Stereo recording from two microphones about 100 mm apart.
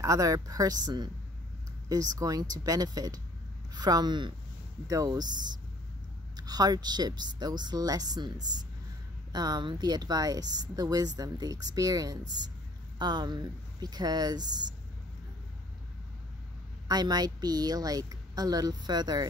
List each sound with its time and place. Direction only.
0.0 s speech: 35° right (ahead or behind)
16.8 s speech: 40° right (ahead or behind)